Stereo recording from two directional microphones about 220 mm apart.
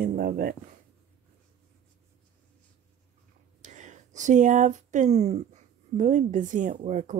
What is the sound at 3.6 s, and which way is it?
Speech, 35° right (ahead or behind).